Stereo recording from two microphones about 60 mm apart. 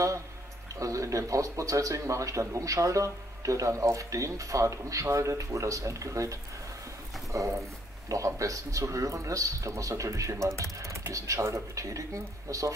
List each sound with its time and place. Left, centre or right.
0.7 s speech: right
7.3 s speech: right